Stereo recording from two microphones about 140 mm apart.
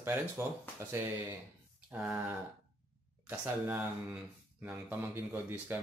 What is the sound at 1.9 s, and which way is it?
Speech, 10° right (ahead or behind).